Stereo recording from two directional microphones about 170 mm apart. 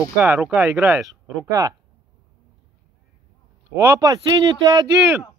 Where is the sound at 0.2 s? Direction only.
10° right (ahead or behind).